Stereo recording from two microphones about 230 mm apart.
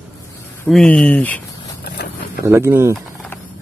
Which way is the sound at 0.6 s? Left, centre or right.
Centre.